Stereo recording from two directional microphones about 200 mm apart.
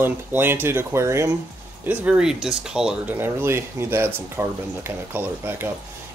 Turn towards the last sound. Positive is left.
turn(degrees=-10)  # may be behind; listen again after turning